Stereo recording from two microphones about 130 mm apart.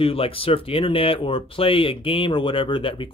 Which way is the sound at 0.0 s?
45° left (ahead or behind).